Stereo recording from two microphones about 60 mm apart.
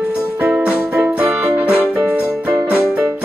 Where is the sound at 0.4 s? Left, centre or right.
Right.